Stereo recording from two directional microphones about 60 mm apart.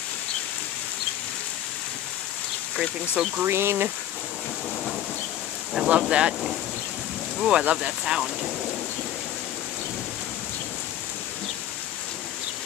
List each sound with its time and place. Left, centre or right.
2.7 s speech: centre
3.4 s speech: right
5.9 s speech: centre